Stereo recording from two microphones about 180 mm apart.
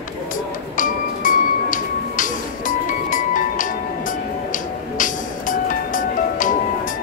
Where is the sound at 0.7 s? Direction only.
50° left (ahead or behind).